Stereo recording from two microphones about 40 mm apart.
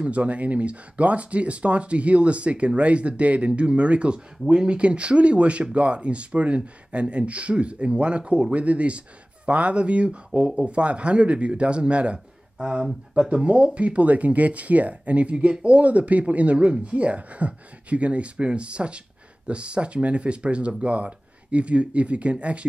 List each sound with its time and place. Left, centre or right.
0.0 s a man's voice: right